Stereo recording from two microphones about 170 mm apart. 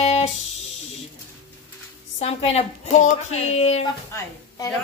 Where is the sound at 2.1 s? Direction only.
40° left (ahead or behind).